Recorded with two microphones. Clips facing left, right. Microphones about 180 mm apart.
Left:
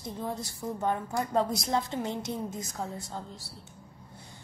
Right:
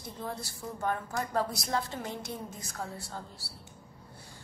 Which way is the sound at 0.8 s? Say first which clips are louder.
Left 2 dB; 20° left (ahead or behind).